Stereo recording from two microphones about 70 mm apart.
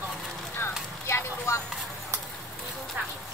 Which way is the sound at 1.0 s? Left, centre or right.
Left.